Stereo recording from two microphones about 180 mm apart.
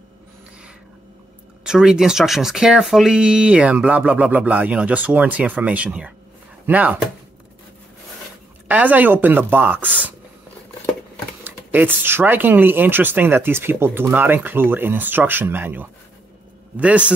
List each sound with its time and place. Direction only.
1.6 s speech: 5° right (ahead or behind)
8.6 s speech: 10° right (ahead or behind)
9.8 s speech: 10° left (ahead or behind)
11.4 s speech: 10° right (ahead or behind)